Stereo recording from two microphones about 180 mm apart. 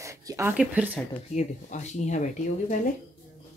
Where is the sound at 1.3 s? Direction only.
40° left (ahead or behind).